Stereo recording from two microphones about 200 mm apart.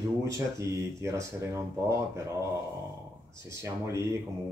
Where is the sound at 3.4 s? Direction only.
15° right (ahead or behind).